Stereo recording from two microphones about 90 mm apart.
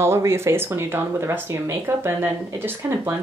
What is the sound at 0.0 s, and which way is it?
Speech, 30° right (ahead or behind).